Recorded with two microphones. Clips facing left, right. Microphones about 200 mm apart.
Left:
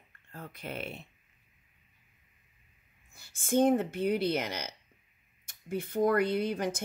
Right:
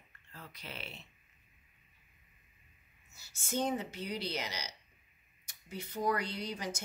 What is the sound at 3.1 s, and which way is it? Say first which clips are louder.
A woman's voice: left 9 dB; 55° left (ahead or behind).